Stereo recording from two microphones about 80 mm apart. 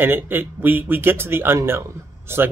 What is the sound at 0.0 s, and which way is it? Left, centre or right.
Speech, right.